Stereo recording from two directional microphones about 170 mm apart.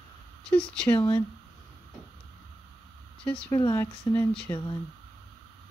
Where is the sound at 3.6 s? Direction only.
20° left (ahead or behind).